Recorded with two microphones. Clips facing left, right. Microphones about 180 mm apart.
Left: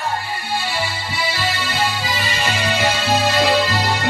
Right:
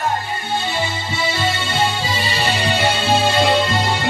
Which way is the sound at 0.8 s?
25° right (ahead or behind).